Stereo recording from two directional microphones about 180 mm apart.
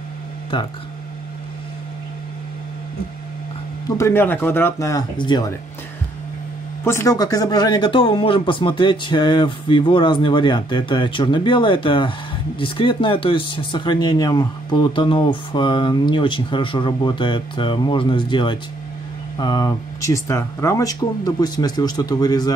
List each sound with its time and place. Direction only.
4.0 s speech: 10° left (ahead or behind)
6.8 s speech: 15° left (ahead or behind)